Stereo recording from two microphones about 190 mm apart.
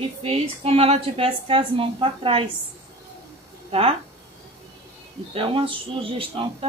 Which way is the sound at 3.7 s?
30° right (ahead or behind).